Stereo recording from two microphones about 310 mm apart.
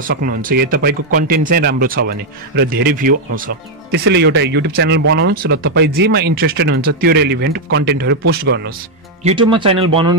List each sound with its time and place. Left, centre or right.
0.1 s speech: right
9.2 s speech: centre